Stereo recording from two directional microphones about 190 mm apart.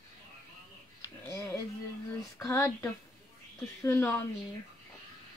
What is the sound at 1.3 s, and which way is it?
Speech, 15° left (ahead or behind).